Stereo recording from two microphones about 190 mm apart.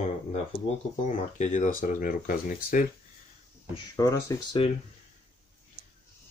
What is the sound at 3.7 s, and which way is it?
Speech, 20° left (ahead or behind).